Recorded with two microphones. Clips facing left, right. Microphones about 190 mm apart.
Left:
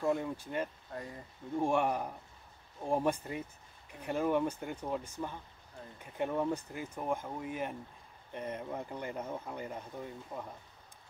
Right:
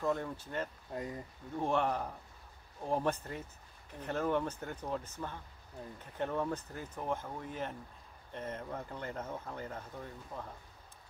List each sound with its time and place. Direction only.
0.0 s speech: 10° left (ahead or behind)
0.9 s speech: 20° right (ahead or behind)
1.6 s speech: 10° left (ahead or behind)